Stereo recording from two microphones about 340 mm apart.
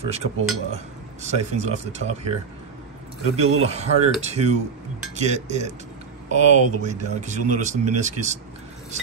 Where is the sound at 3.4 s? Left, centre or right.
Right.